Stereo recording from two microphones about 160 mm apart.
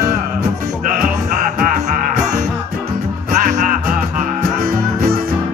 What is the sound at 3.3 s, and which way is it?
Music, 55° right (ahead or behind).